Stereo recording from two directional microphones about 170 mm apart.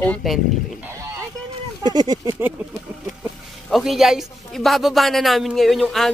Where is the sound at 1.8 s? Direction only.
25° right (ahead or behind).